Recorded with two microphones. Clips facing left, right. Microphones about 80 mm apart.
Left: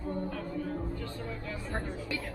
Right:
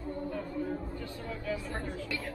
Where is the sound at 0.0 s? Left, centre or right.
Left.